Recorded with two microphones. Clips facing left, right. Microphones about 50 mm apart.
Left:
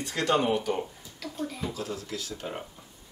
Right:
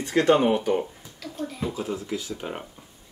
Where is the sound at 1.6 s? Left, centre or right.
Right.